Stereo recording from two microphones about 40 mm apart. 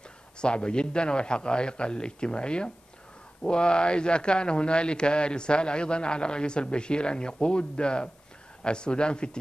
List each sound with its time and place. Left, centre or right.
0.4 s speech: left